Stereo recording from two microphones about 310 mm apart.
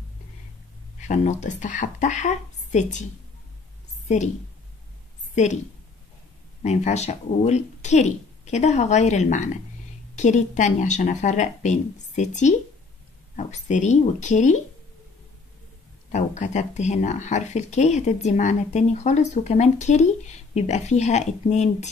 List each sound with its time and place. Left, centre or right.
0.9 s speech: left
5.3 s a woman's voice: left
6.6 s speech: left
16.1 s speech: left